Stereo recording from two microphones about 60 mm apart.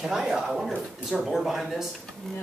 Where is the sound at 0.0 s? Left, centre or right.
Centre.